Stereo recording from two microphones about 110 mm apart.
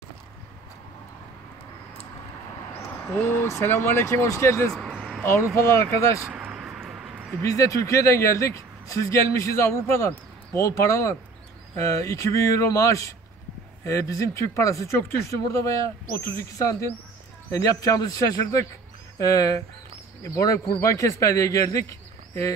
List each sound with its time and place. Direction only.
3.4 s a man's voice: 25° left (ahead or behind)
4.9 s a sound: 5° left (ahead or behind)
5.2 s a man's voice: 25° left (ahead or behind)
6.2 s vehicle: 10° right (ahead or behind)
7.4 s a man's voice: 30° left (ahead or behind)